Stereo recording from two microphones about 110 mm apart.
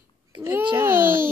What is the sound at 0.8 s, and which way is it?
Babbling, 20° right (ahead or behind).